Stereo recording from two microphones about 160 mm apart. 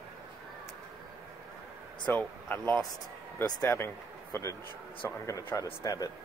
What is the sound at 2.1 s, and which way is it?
Speech, 10° left (ahead or behind).